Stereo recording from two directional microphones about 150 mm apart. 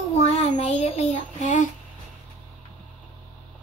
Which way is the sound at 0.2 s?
50° left (ahead or behind).